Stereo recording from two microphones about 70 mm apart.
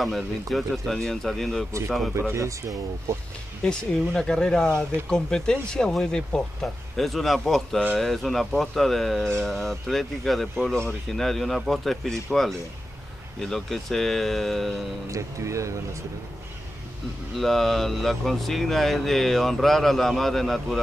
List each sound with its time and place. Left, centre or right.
0.0 s speech: centre
2.3 s speech: right
3.6 s speech: centre
15.0 s speech: right
17.4 s speech: centre